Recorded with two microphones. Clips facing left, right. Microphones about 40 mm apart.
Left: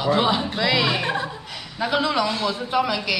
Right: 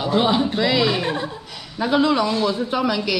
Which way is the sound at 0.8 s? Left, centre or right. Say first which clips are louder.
Right 2 dB; centre.